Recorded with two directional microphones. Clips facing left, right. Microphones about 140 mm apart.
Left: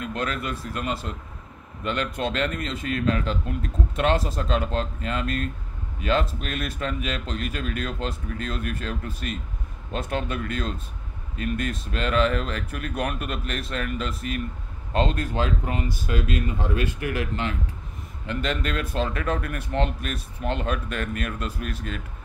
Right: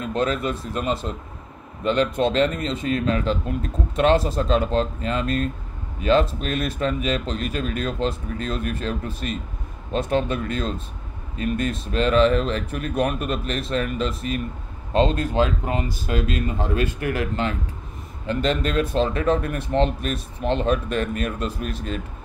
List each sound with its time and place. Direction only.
0.0 s speech: 25° right (ahead or behind)